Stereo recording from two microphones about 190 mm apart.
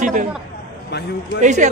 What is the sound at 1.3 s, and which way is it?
Speech, 40° right (ahead or behind).